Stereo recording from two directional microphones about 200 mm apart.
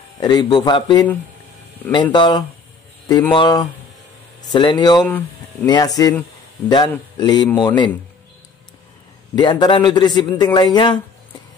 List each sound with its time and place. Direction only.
0.2 s a man's voice: 20° left (ahead or behind)
2.1 s a man's voice: 20° left (ahead or behind)
5.0 s speech: 5° left (ahead or behind)
5.7 s a man's voice: 20° left (ahead or behind)
9.3 s a man's voice: 20° left (ahead or behind)